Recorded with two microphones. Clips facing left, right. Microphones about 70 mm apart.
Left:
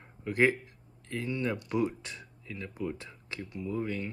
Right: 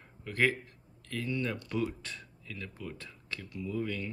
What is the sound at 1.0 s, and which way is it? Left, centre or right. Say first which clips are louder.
Speech: left 2 dB; left.